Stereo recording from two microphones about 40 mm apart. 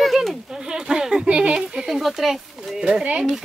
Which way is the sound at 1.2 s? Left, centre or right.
Right.